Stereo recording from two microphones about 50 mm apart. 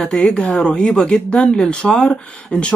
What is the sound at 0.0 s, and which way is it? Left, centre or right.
A woman's voice, centre.